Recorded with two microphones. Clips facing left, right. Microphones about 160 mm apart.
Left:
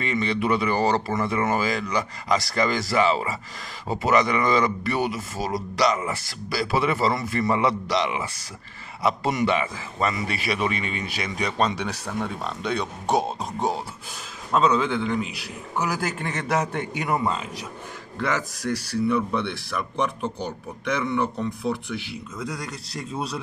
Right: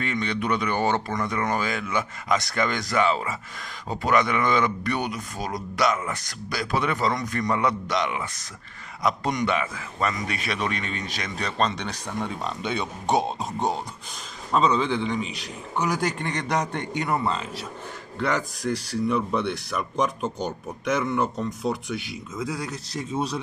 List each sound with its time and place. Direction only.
0.0 s a man's voice: centre (ahead or behind)
18.6 s a man's voice: 5° right (ahead or behind)